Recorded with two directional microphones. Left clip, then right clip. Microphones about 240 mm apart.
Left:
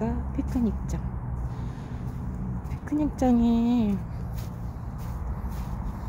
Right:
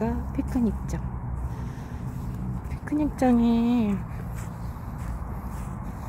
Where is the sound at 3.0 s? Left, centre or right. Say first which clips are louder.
Right 1 dB; centre.